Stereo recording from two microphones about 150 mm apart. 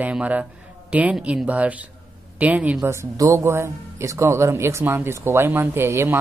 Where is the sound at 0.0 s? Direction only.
10° right (ahead or behind).